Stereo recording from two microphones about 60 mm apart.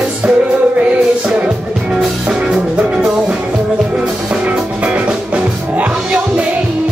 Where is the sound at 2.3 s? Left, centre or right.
Centre.